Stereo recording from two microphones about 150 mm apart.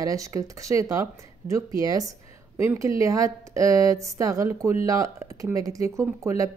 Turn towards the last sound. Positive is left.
turn(degrees=-20)  # may be behind; listen again after turning